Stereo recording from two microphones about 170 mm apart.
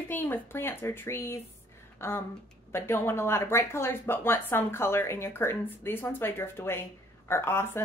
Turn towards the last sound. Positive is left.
turn(degrees=15)  # may be behind; listen again after turning